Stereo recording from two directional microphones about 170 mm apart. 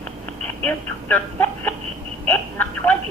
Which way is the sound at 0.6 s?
10° left (ahead or behind).